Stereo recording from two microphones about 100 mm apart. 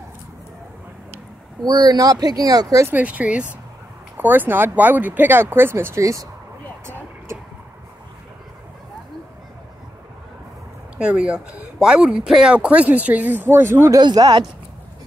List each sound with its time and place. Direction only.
1.6 s speech: 40° right (ahead or behind)
2.9 s speech: 15° right (ahead or behind); by 6.2 s 30° right (ahead or behind)
11.0 s speech: 10° right (ahead or behind)
13.9 s speech: 45° right (ahead or behind)